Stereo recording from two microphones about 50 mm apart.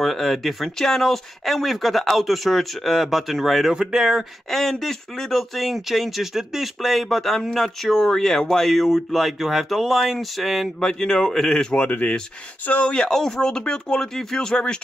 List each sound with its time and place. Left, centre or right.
0.0 s speech: centre
4.5 s speech: centre
10.9 s speech: centre
12.9 s speech: centre